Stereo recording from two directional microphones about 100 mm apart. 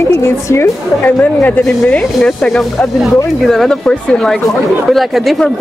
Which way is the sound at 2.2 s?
5° left (ahead or behind).